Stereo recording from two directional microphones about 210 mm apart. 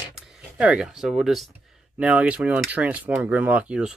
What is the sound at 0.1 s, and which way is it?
Speech, 5° right (ahead or behind).